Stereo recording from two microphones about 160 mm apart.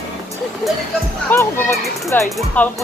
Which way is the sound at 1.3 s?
15° left (ahead or behind).